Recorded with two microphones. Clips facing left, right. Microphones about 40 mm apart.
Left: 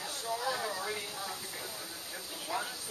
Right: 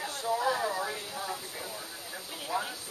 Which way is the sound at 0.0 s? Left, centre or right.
Centre.